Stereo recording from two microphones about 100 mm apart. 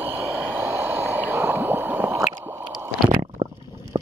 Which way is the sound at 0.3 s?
20° right (ahead or behind).